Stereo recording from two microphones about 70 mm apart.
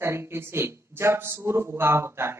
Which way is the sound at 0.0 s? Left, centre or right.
Right.